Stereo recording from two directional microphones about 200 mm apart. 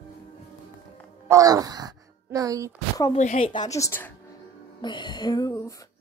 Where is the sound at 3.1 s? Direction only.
35° left (ahead or behind); by 4.1 s 10° left (ahead or behind).